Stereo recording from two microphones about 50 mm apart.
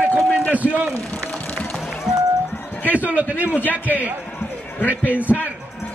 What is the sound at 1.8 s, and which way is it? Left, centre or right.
Run, centre.